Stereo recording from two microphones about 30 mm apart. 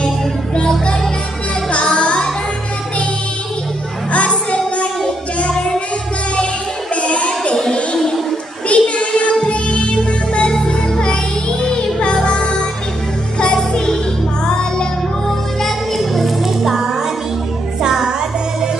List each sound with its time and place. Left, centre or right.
0.6 s music: left
7.0 s music: left
8.6 s music: left
15.2 s music: centre
16.0 s music: centre; by 18.1 s right